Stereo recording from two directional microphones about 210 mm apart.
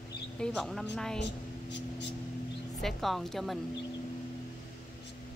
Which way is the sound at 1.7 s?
55° left (ahead or behind).